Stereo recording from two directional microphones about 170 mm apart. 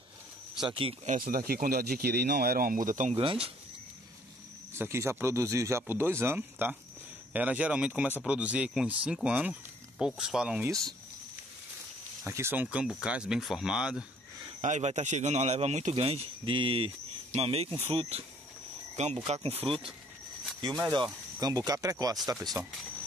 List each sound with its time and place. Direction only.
0.7 s a man's voice: 30° right (ahead or behind)
1.0 s speech: 50° right (ahead or behind)
3.2 s a man's voice: 35° right (ahead or behind)
4.7 s speech: 15° right (ahead or behind)
12.3 s speech: 15° right (ahead or behind)
14.6 s a man's voice: 45° right (ahead or behind)
18.9 s a man's voice: 40° right (ahead or behind); by 22.7 s 20° right (ahead or behind)